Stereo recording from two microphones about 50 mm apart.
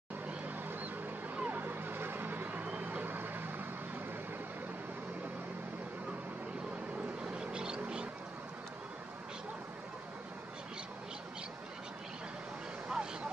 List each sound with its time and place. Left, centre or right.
1.3 s a sound: right
7.2 s duck: centre
12.8 s vehicle: centre